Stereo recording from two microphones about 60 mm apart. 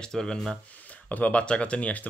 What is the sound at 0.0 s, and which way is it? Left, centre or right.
Speech, centre.